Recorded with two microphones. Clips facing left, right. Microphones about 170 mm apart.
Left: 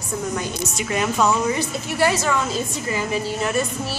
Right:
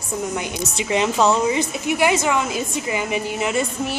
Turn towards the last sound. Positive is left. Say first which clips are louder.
# right 1 dB
turn(degrees=-20)  # may be behind; listen again after turning